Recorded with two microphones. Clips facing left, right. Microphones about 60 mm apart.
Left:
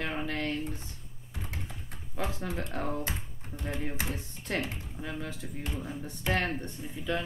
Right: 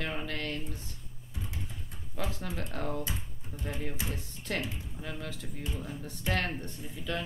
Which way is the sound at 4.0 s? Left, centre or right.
Left.